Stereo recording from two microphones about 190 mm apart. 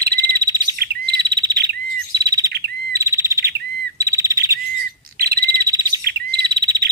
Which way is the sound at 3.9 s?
15° right (ahead or behind).